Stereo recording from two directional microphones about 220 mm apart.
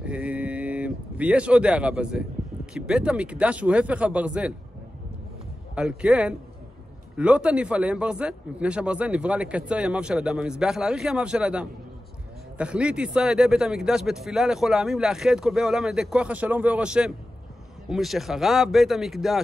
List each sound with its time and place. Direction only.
0.0 s speech: 5° right (ahead or behind)
5.8 s a man's voice: 5° right (ahead or behind)